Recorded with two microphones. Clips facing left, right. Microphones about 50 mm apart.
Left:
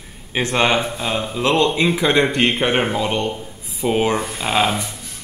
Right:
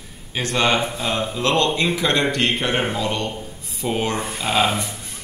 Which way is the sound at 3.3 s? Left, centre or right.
Centre.